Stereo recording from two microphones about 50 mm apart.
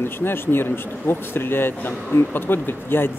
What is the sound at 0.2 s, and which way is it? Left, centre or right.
Speech, left.